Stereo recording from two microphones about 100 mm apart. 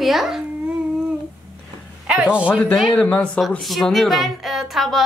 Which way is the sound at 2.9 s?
15° left (ahead or behind).